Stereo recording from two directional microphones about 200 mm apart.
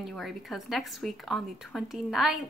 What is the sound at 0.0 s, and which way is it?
Speech, centre (ahead or behind).